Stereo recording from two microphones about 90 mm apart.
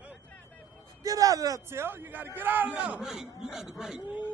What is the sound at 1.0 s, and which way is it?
A man's voice, 40° right (ahead or behind).